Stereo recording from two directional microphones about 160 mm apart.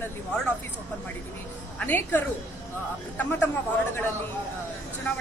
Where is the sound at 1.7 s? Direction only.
10° left (ahead or behind).